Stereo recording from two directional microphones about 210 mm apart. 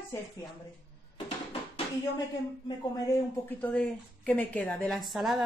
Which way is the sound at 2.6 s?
15° left (ahead or behind).